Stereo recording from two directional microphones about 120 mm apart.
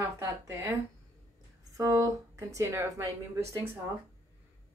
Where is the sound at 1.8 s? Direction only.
30° right (ahead or behind).